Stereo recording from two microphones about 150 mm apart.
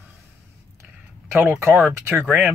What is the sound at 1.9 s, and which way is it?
Speech, 15° right (ahead or behind).